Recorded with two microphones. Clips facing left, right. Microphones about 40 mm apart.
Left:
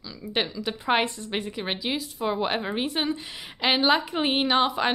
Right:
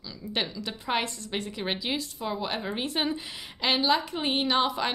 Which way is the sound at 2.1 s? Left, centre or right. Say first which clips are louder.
Left 5 dB; left.